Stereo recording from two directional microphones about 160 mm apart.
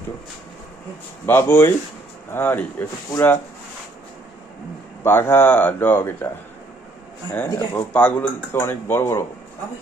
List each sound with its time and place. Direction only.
1.2 s speech: 15° left (ahead or behind)
5.0 s speech: 15° left (ahead or behind)
7.3 s speech: 20° left (ahead or behind)